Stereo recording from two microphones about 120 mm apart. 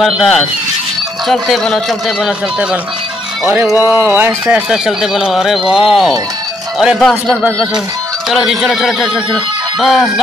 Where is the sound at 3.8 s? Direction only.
20° right (ahead or behind).